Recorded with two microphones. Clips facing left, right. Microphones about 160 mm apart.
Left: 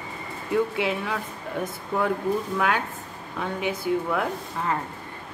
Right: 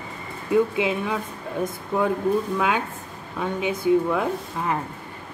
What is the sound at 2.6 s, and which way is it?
Speech, 20° right (ahead or behind).